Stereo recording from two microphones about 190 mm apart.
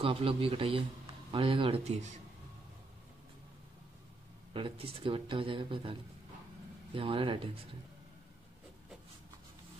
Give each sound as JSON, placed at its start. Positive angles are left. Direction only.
{"t": 0.0, "sound": "speech", "side_deg": -30}
{"t": 4.6, "sound": "speech", "side_deg": -30}